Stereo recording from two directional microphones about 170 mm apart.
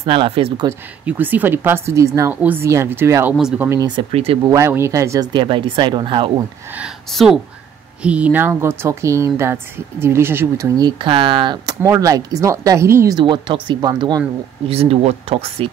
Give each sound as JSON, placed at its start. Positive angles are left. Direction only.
{"t": 0.0, "sound": "speech", "side_deg": -35}
{"t": 0.7, "sound": "speech", "side_deg": -10}
{"t": 3.8, "sound": "speech", "side_deg": -30}
{"t": 4.5, "sound": "speech", "side_deg": -15}
{"t": 7.1, "sound": "speech", "side_deg": 0}
{"t": 13.2, "sound": "speech", "side_deg": -30}
{"t": 14.7, "sound": "speech", "side_deg": -35}